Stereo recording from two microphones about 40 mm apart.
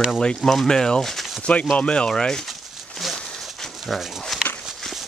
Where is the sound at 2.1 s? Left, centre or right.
Centre.